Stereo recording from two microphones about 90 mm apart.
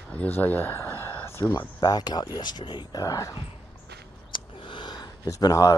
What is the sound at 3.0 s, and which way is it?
Speech, 45° left (ahead or behind).